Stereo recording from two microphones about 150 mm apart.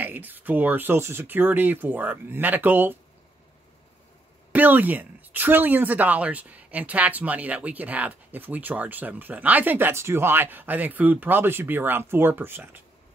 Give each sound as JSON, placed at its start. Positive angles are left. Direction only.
{"t": 0.0, "sound": "a woman's voice", "side_deg": -10}
{"t": 4.5, "sound": "a woman's voice", "side_deg": -10}